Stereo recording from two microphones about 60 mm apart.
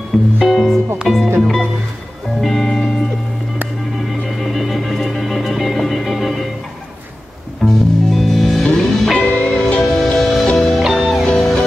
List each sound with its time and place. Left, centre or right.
0.1 s speech: centre
2.4 s music: centre
4.2 s music: centre
7.6 s music: centre
9.2 s music: left
10.0 s music: centre